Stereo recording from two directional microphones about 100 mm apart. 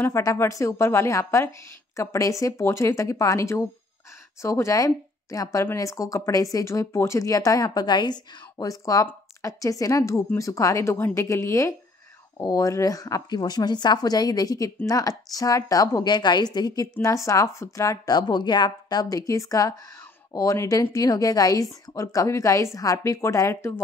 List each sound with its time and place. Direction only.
0.0 s speech: 30° left (ahead or behind)